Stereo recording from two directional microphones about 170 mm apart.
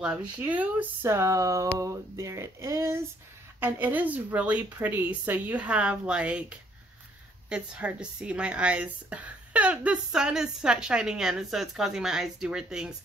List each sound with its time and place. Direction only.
0.0 s speech: 10° right (ahead or behind)
7.4 s a woman's voice: 5° right (ahead or behind)